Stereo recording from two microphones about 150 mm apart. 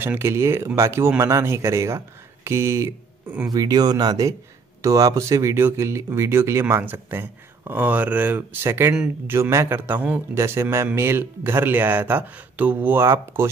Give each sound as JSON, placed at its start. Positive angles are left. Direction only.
{"t": 0.0, "sound": "a man's voice", "side_deg": -15}